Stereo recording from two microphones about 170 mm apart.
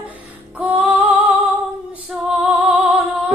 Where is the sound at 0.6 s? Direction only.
10° right (ahead or behind).